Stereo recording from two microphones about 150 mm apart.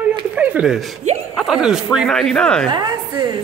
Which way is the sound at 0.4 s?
10° right (ahead or behind).